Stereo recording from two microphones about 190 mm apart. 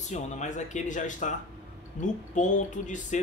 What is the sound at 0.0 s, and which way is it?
Speech, 40° left (ahead or behind).